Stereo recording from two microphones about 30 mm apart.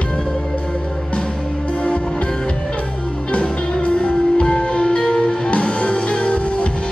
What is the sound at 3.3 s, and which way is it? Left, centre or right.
Music, left.